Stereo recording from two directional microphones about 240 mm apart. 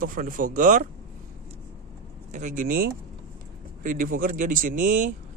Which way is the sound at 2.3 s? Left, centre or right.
Right.